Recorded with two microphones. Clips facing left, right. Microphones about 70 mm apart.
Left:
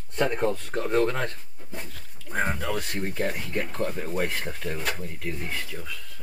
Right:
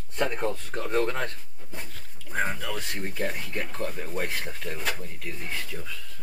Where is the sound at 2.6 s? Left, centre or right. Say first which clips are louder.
Left 4 dB; left.